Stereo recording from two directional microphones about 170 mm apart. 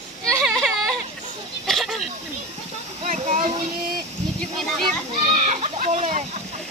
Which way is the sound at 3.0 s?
45° right (ahead or behind).